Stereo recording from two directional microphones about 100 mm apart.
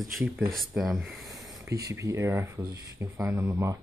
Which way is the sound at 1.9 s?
30° right (ahead or behind).